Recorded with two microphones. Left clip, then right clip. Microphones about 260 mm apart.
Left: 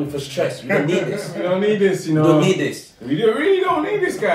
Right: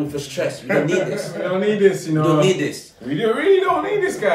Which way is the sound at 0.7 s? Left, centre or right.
Centre.